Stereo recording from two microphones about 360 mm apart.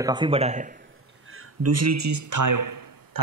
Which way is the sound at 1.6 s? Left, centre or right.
Right.